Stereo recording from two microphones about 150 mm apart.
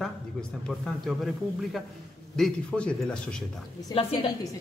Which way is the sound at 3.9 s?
40° left (ahead or behind).